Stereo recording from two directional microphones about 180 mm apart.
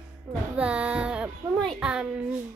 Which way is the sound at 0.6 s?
5° right (ahead or behind).